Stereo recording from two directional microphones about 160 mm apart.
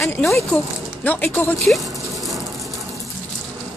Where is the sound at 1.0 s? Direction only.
10° left (ahead or behind).